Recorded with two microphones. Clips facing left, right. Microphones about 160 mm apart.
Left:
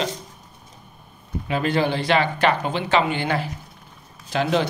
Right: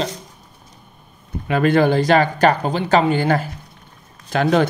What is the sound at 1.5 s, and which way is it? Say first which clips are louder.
Speech: right 6 dB; 55° right (ahead or behind).